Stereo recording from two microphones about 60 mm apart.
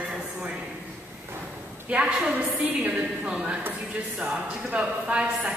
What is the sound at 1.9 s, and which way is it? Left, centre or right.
A man's voice, centre.